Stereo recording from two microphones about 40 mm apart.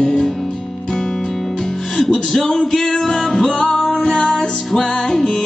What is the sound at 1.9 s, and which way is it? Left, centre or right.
Music, centre.